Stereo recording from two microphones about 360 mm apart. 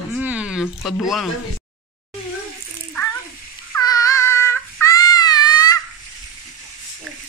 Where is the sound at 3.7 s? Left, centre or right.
Centre.